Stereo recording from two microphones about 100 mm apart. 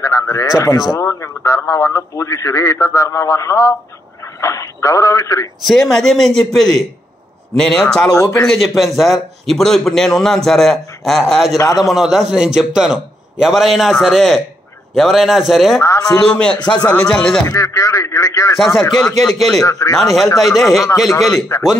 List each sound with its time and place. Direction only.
0.0 s a man's voice: 30° left (ahead or behind)
5.7 s a man's voice: 5° left (ahead or behind)
8.1 s a man's voice: 30° left (ahead or behind)
8.7 s a man's voice: centre (ahead or behind)
11.5 s a man's voice: 35° left (ahead or behind)
11.9 s a man's voice: 5° right (ahead or behind)
15.8 s a man's voice: 30° left (ahead or behind)
16.1 s speech: 10° left (ahead or behind)
17.5 s a man's voice: 30° left (ahead or behind)
18.6 s a man's voice: centre (ahead or behind)
19.6 s a man's voice: 35° left (ahead or behind)
20.0 s a man's voice: centre (ahead or behind)
21.5 s a man's voice: 35° left (ahead or behind)